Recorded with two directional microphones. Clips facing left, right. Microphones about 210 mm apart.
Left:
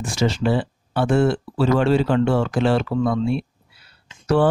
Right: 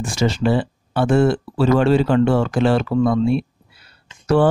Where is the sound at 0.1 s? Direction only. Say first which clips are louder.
Right 2 dB; 45° right (ahead or behind).